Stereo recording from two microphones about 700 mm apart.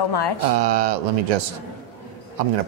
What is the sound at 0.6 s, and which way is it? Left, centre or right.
Speech, right.